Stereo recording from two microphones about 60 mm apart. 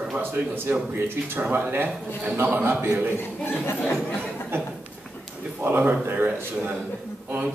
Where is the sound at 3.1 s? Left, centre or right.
Left.